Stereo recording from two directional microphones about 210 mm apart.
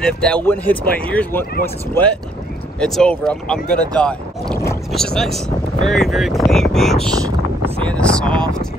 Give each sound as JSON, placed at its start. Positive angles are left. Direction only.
{"t": 0.0, "sound": "speech", "side_deg": 5}
{"t": 2.8, "sound": "speech", "side_deg": 5}
{"t": 7.2, "sound": "boat", "side_deg": -15}
{"t": 7.8, "sound": "a sound", "side_deg": 5}